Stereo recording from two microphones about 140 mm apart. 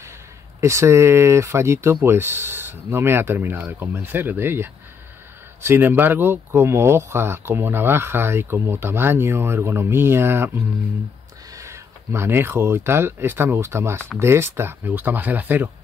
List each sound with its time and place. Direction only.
0.6 s speech: 20° right (ahead or behind)